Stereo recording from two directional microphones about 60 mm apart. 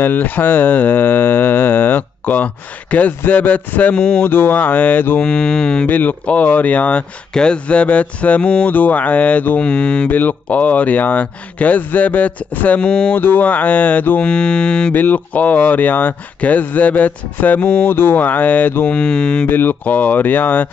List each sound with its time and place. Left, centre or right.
0.0 s a sound: left
5.2 s speech: centre
5.9 s speech: left
18.9 s speech: centre
19.4 s speech: left